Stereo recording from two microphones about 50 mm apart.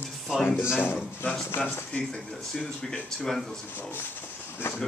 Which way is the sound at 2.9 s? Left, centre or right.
Centre.